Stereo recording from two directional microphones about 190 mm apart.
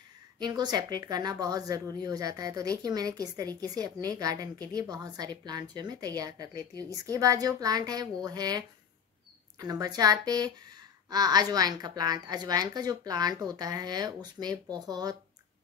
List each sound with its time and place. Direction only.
0.4 s a woman's voice: 20° right (ahead or behind)